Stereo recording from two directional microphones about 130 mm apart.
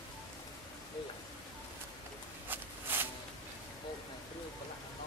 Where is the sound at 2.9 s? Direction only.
15° right (ahead or behind).